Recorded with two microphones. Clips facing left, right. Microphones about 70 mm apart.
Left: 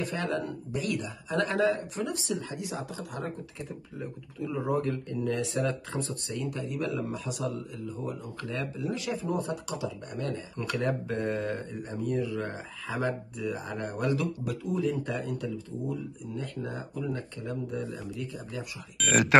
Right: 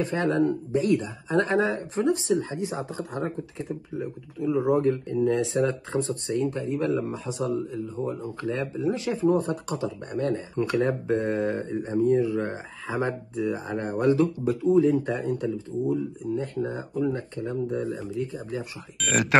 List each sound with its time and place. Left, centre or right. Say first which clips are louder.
0.0 s speech: right 8 dB; right
4.0 s speech: right 5 dB; centre
18.9 s speech: even; centre